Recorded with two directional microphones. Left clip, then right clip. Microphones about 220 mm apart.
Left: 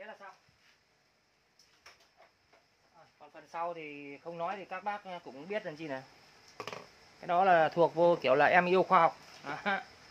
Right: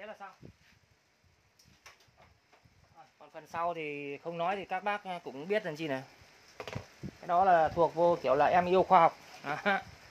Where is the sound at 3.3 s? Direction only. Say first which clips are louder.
Right 3 dB; 50° right (ahead or behind).